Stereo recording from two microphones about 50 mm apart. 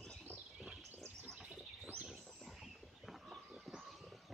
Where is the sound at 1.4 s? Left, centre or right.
Right.